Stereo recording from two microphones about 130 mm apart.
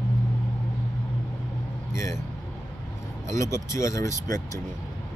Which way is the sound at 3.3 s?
20° left (ahead or behind).